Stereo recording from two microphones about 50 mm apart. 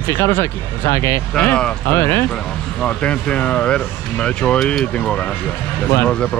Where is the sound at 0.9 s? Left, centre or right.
Left.